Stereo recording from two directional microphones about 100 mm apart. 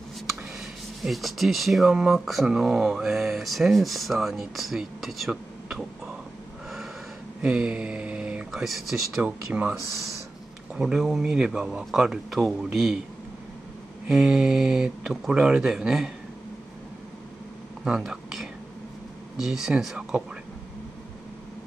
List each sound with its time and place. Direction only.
0.4 s speech: centre (ahead or behind)
7.4 s mantra: 10° right (ahead or behind)
8.5 s speech: centre (ahead or behind)
9.2 s speech: 15° right (ahead or behind)
10.7 s speech: 5° right (ahead or behind)
14.0 s speech: 5° right (ahead or behind)
17.8 s a sound: 5° right (ahead or behind)
19.4 s speech: 5° right (ahead or behind)